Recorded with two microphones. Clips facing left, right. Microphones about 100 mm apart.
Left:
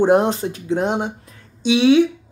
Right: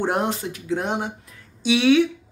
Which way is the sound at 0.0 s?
25° left (ahead or behind).